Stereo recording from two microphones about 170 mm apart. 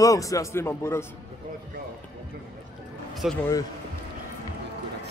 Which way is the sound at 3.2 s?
5° right (ahead or behind).